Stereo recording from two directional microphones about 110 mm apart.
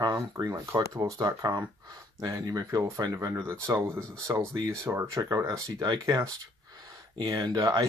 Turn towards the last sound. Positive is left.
turn(degrees=-35)  # may be behind; listen again after turning